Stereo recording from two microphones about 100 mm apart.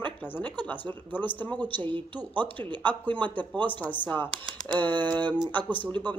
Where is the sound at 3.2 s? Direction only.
15° left (ahead or behind).